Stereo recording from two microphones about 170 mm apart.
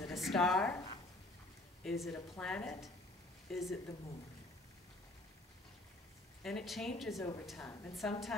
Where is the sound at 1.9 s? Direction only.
5° left (ahead or behind).